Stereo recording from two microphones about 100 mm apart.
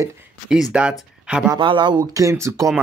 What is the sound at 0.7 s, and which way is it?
Speech, 10° right (ahead or behind).